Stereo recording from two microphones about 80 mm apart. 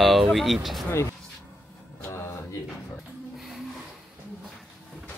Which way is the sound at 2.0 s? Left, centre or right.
Left.